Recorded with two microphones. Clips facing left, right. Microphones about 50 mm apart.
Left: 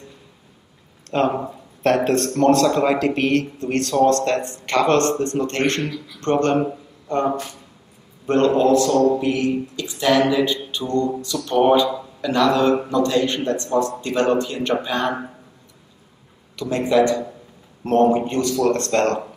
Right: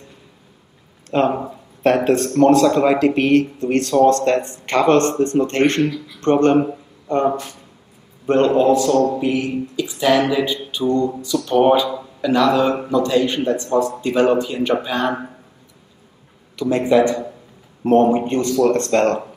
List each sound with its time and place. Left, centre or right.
1.1 s speech: centre
3.5 s speech: right
8.3 s speech: centre
10.7 s mantra: centre
11.2 s speech: centre
16.5 s speech: right
18.9 s speech: centre